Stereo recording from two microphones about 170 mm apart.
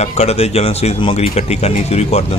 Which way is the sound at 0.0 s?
40° left (ahead or behind).